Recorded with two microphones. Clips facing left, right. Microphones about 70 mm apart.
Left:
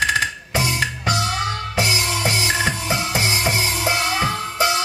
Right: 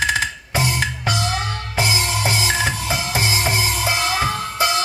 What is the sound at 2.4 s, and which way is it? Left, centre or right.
Music, left.